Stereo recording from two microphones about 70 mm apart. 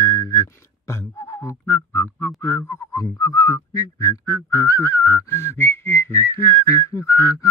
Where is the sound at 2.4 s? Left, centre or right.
Left.